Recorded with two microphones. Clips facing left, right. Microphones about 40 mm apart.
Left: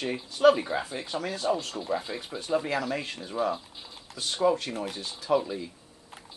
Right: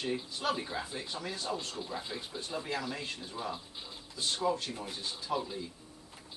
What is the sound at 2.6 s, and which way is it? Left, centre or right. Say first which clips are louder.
Speech: left 7 dB; left.